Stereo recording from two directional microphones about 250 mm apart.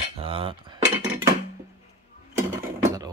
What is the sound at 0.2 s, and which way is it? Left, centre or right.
Cutlery, right.